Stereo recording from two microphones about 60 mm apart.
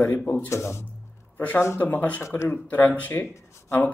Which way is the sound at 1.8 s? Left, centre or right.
Left.